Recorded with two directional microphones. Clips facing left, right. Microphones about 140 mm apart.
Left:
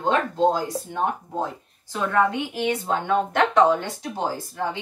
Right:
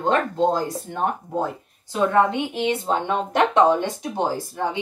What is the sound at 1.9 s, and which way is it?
A woman's voice, 20° right (ahead or behind).